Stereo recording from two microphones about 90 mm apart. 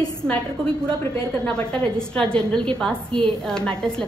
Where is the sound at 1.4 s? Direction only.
10° left (ahead or behind).